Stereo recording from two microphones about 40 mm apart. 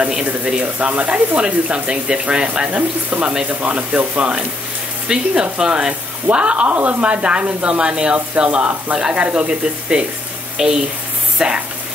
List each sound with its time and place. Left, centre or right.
0.6 s speech: right
5.0 s speech: right
10.6 s speech: centre